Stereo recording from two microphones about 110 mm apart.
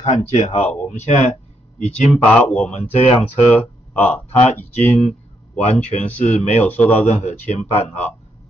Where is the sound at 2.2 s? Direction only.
15° left (ahead or behind).